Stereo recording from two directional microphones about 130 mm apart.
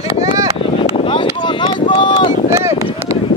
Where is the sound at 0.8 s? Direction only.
45° left (ahead or behind).